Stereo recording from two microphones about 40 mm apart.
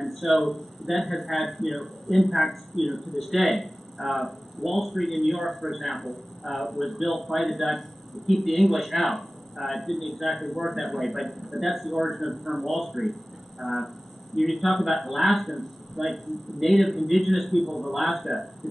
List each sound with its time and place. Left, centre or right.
0.0 s a man's voice: centre
13.6 s a sound: centre
14.3 s a man's voice: centre